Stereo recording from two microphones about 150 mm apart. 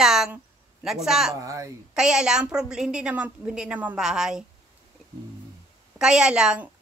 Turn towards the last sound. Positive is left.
turn(degrees=-5)  # may be behind; listen again after turning